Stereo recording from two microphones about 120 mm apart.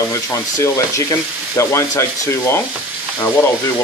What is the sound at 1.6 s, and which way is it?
Speech, 25° left (ahead or behind).